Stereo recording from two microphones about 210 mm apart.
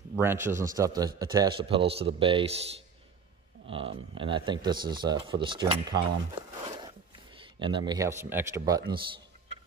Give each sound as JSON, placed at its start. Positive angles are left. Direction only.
{"t": 0.1, "sound": "a man's voice", "side_deg": -10}
{"t": 7.3, "sound": "speech", "side_deg": -25}